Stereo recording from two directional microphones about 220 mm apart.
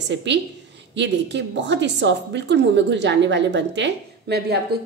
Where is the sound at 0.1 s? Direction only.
55° right (ahead or behind).